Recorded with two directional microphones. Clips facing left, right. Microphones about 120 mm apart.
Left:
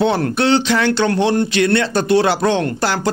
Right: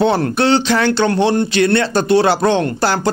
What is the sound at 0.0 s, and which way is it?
Speech, 35° right (ahead or behind).